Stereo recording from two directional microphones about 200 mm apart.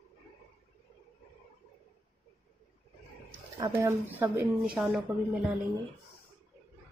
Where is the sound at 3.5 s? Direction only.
15° right (ahead or behind).